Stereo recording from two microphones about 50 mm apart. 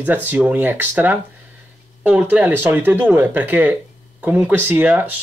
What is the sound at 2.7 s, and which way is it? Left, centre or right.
Speech, right.